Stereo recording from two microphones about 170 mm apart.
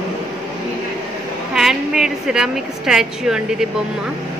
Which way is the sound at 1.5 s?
Centre (ahead or behind).